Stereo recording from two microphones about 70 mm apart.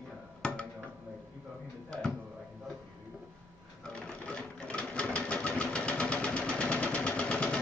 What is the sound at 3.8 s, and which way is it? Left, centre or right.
Sewing machine, centre.